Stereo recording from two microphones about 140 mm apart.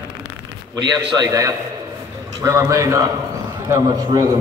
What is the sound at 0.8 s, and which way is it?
A man's voice, 30° right (ahead or behind).